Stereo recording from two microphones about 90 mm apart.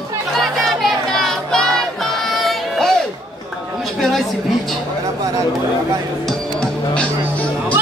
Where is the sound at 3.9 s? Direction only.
Centre (ahead or behind).